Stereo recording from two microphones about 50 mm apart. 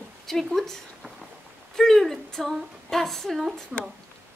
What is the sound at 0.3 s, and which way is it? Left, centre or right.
A woman's voice, centre.